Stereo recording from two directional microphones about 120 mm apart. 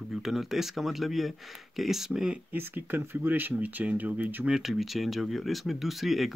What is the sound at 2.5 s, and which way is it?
Speech, 15° right (ahead or behind).